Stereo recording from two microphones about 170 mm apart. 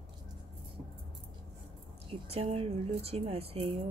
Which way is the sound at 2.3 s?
35° right (ahead or behind).